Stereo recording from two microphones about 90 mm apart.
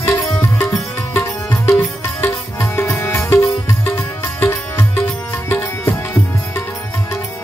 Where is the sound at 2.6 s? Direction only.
25° left (ahead or behind).